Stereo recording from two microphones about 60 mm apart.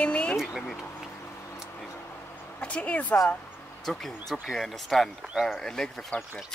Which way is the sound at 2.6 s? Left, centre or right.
Left.